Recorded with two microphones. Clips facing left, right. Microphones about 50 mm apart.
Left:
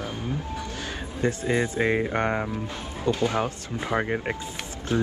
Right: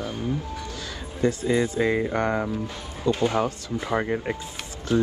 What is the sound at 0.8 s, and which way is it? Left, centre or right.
Speech, left.